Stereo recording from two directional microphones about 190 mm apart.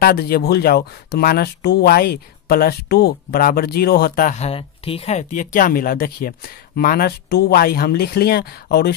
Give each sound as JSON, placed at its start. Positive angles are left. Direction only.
{"t": 0.0, "sound": "speech", "side_deg": 55}